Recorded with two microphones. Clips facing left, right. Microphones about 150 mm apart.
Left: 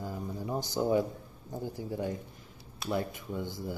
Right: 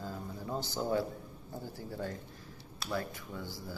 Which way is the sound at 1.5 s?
15° left (ahead or behind).